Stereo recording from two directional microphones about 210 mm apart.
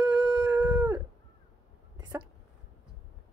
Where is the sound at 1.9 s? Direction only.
20° right (ahead or behind).